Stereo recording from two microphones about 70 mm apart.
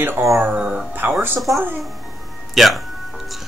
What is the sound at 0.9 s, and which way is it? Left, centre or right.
Speech, right.